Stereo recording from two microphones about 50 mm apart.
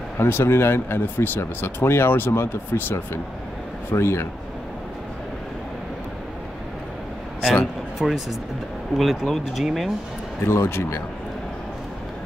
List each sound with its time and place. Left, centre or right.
0.2 s speech: left
3.9 s speech: left
8.0 s speech: centre
10.4 s speech: left